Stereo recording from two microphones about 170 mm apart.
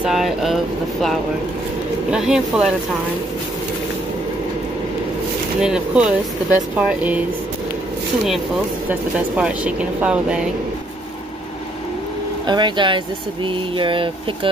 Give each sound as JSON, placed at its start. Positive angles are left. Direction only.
{"t": 0.0, "sound": "a sound", "side_deg": 0}
{"t": 2.0, "sound": "speech", "side_deg": -5}
{"t": 5.6, "sound": "speech", "side_deg": -5}
{"t": 9.4, "sound": "speech", "side_deg": -5}
{"t": 12.4, "sound": "speech", "side_deg": -25}